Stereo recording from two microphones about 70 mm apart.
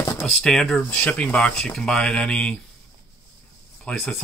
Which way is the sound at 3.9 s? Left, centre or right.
Centre.